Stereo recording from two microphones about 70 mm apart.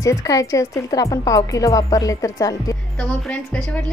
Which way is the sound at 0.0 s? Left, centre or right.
Left.